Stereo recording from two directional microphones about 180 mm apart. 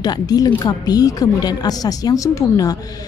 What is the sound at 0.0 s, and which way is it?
Speech, 20° left (ahead or behind).